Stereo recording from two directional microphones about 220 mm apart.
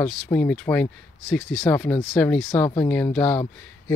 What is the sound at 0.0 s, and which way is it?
Speech, 5° left (ahead or behind).